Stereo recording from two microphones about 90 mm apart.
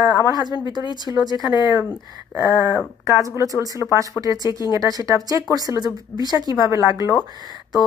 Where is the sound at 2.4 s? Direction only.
25° right (ahead or behind).